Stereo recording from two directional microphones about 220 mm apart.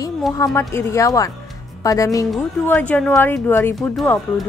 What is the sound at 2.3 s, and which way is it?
Speech, 5° left (ahead or behind).